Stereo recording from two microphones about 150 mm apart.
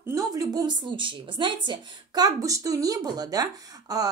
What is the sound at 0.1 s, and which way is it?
A woman's voice, 25° right (ahead or behind).